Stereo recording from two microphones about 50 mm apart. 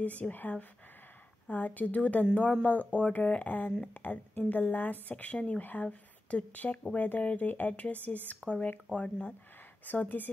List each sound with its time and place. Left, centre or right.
0.0 s speech: left
5.6 s speech: left
8.4 s speech: centre
9.8 s speech: left